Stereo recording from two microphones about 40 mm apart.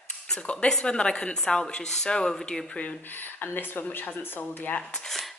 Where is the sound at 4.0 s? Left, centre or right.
Left.